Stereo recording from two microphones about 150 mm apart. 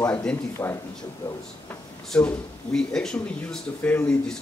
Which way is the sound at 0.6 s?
20° left (ahead or behind).